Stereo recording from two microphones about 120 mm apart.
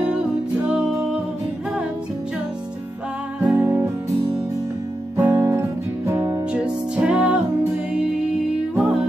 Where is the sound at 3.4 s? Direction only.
15° right (ahead or behind).